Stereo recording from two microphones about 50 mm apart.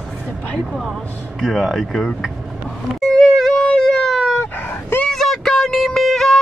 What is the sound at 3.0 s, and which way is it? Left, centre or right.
Music, centre.